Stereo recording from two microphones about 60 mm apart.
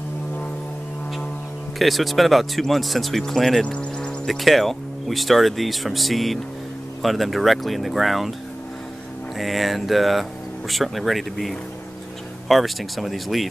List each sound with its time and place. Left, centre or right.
1.8 s speech: centre
3.6 s music: centre
4.3 s speech: centre
9.4 s speech: centre